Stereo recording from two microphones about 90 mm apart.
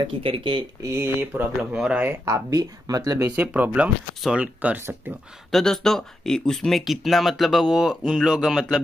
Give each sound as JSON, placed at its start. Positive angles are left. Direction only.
{"t": 0.0, "sound": "speech", "side_deg": -80}
{"t": 0.8, "sound": "speech", "side_deg": -25}
{"t": 1.6, "sound": "speech", "side_deg": -10}
{"t": 2.2, "sound": "speech", "side_deg": -40}
{"t": 3.3, "sound": "speech", "side_deg": -20}
{"t": 5.5, "sound": "speech", "side_deg": 5}